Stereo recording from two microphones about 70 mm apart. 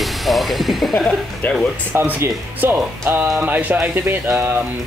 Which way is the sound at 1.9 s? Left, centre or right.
Right.